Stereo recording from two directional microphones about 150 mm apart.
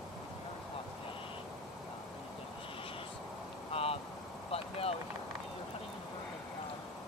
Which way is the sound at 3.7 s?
40° left (ahead or behind).